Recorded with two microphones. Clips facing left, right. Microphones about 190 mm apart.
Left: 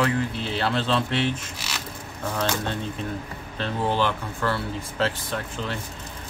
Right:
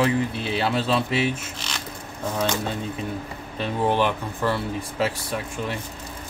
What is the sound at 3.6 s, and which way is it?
Speech, 15° right (ahead or behind).